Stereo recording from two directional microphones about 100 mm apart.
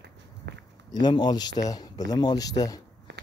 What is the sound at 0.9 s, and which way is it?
A man's voice, 45° left (ahead or behind).